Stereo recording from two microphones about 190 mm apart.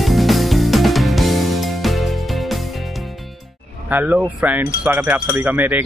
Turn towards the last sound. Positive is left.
turn(degrees=-10)  # may be behind; listen again after turning